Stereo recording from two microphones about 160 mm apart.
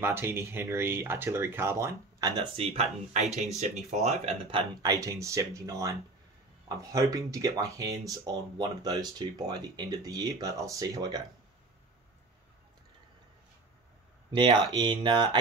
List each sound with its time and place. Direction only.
0.0 s speech: 15° right (ahead or behind); by 4.6 s 35° right (ahead or behind)
4.8 s speech: 20° right (ahead or behind)
14.3 s speech: 30° right (ahead or behind)